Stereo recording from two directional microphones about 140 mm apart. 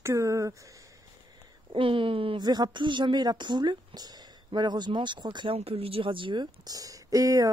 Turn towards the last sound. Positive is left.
turn(degrees=-25)  # may be behind; listen again after turning